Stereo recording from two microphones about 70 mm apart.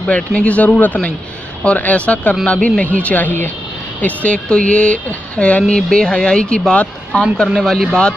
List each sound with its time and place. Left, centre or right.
0.0 s speech: centre
7.4 s speech: centre